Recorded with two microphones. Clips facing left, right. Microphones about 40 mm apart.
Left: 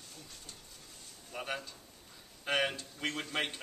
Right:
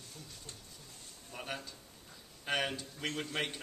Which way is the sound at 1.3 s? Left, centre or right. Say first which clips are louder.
Left 3 dB; centre.